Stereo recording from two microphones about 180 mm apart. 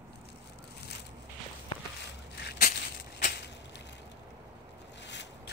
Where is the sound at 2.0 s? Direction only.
65° left (ahead or behind).